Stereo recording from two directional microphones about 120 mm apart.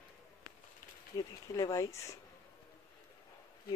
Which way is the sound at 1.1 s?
30° left (ahead or behind).